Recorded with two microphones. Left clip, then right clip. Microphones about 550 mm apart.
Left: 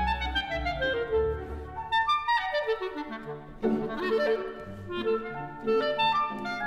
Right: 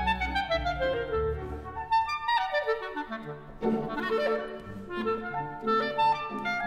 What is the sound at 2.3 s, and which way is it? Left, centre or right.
Clarinet, centre.